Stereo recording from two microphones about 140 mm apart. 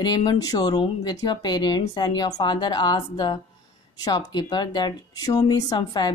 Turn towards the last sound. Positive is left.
turn(degrees=30)  # may be behind; listen again after turning